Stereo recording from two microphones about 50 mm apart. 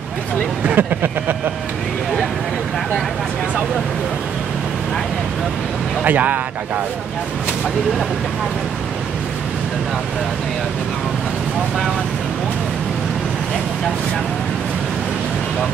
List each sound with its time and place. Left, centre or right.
0.7 s speech: right
6.0 s speech: right